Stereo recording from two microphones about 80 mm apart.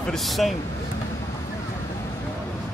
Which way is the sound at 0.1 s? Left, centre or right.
Centre.